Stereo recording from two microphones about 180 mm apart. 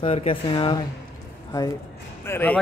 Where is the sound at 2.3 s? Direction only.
10° left (ahead or behind).